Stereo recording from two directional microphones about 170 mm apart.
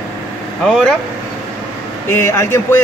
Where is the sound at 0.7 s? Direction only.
5° left (ahead or behind).